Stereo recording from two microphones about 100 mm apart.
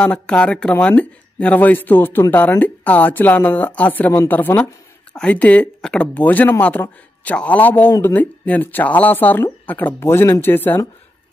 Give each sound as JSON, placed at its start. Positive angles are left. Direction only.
{"t": 0.0, "sound": "speech", "side_deg": 10}